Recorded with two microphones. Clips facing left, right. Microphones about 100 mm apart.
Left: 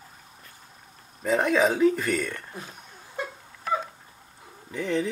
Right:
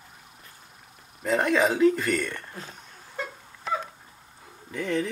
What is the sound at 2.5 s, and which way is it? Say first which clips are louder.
Speech: left 1 dB; 15° left (ahead or behind).